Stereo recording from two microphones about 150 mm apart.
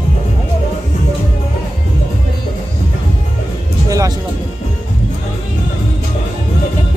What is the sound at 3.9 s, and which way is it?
Music, 25° right (ahead or behind).